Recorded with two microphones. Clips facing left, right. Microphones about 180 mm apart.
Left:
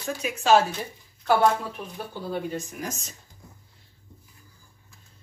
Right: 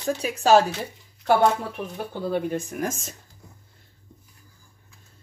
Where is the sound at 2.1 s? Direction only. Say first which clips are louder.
Right 5 dB; 55° right (ahead or behind).